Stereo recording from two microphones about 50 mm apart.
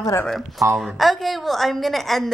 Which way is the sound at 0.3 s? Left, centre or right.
Centre.